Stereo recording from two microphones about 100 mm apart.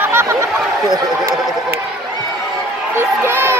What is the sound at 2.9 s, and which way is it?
Crowd, 25° right (ahead or behind).